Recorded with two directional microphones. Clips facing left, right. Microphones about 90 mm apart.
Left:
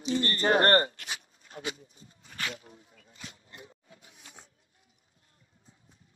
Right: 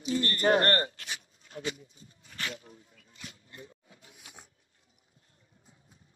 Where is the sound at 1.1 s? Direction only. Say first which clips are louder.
Left 1 dB; 40° left (ahead or behind).